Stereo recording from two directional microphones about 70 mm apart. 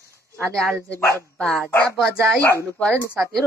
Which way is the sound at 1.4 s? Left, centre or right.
Centre.